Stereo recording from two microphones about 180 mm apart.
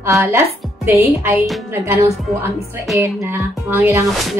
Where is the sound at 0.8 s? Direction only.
15° right (ahead or behind).